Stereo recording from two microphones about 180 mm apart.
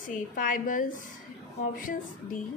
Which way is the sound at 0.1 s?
50° left (ahead or behind).